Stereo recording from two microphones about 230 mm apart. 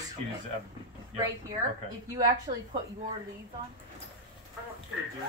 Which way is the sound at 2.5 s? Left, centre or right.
Centre.